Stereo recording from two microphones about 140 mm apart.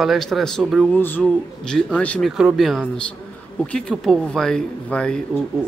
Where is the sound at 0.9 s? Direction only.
15° left (ahead or behind).